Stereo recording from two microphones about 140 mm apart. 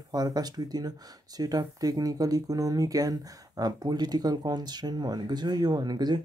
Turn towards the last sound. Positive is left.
turn(degrees=-30)  # may be behind; listen again after turning